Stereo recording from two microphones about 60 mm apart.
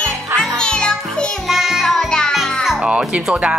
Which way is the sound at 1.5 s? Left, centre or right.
Centre.